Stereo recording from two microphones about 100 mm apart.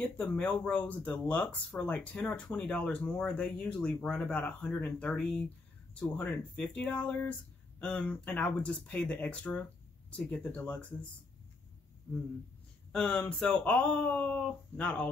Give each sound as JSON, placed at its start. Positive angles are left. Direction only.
{"t": 0.2, "sound": "speech", "side_deg": 15}
{"t": 12.9, "sound": "speech", "side_deg": 10}